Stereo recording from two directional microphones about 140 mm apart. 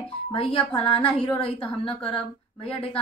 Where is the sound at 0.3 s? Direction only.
40° left (ahead or behind).